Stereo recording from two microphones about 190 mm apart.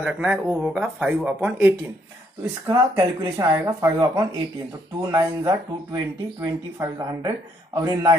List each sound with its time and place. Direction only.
0.0 s speech: 10° right (ahead or behind)